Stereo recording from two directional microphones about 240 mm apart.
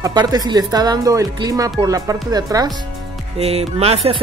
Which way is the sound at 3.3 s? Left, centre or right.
Right.